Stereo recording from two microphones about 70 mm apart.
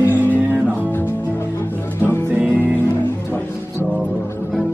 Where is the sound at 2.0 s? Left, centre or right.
Left.